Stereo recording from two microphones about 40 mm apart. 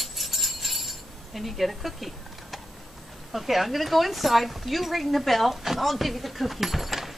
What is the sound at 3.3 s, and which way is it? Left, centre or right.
Speech, centre.